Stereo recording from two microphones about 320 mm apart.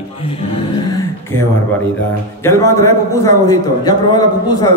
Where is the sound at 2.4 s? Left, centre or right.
Centre.